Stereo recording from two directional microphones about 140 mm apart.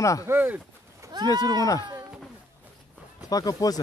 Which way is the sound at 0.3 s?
15° right (ahead or behind).